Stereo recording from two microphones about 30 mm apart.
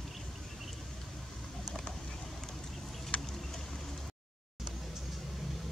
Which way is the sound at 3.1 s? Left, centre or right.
Left.